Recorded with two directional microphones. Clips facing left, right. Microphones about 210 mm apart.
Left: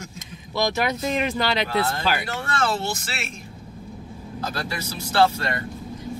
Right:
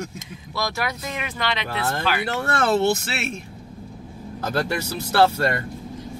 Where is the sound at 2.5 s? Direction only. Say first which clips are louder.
Right 6 dB; 60° right (ahead or behind).